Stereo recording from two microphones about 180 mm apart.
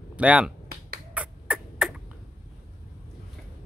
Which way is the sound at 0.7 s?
55° right (ahead or behind).